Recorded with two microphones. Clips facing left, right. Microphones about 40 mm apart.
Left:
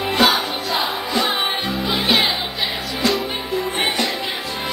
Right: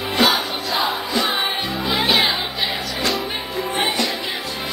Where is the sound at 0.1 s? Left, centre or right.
Left.